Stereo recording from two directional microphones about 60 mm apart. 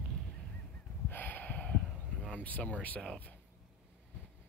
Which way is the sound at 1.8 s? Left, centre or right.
Centre.